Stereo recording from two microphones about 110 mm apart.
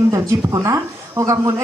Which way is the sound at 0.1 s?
30° right (ahead or behind).